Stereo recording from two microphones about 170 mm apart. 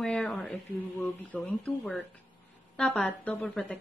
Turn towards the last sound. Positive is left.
turn(degrees=10)  # may be behind; listen again after turning